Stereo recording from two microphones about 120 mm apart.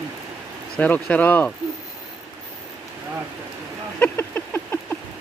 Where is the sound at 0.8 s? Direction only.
15° left (ahead or behind).